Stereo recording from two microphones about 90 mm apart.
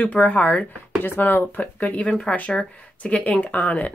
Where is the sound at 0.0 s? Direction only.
15° left (ahead or behind).